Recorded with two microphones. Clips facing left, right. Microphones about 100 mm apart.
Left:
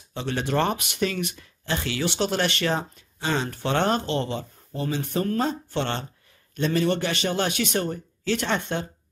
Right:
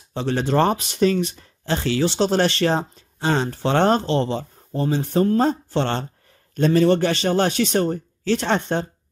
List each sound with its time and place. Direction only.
0.1 s speech: 35° right (ahead or behind)